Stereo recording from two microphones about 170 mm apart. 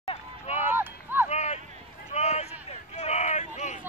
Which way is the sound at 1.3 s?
40° left (ahead or behind).